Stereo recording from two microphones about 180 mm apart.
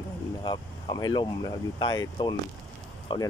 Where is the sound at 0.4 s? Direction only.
25° left (ahead or behind).